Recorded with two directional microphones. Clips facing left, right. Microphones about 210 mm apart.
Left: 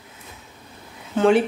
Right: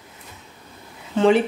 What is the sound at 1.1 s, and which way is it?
Speech, centre (ahead or behind).